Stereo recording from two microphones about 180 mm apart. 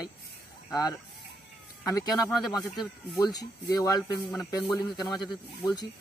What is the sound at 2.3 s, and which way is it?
Speech, centre (ahead or behind).